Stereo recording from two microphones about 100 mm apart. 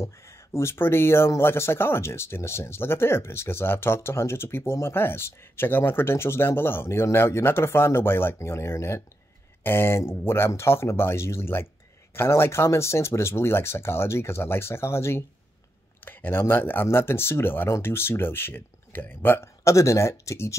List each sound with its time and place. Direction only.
0.0 s speech: 25° left (ahead or behind)